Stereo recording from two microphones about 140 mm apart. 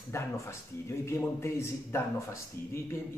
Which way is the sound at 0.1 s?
20° left (ahead or behind).